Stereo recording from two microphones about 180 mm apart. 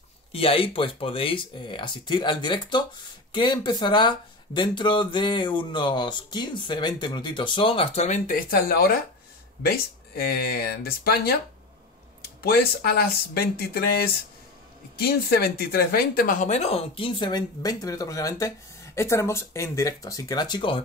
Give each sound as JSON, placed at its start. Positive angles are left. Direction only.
{"t": 0.3, "sound": "speech", "side_deg": 30}
{"t": 12.4, "sound": "speech", "side_deg": 60}